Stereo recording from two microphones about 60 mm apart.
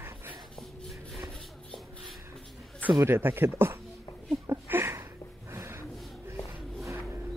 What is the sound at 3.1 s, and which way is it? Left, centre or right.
Speech, right.